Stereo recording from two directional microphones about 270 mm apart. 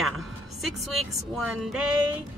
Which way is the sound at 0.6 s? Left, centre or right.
Centre.